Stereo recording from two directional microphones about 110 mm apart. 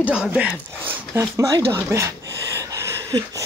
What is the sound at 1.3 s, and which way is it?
Speech, 30° right (ahead or behind).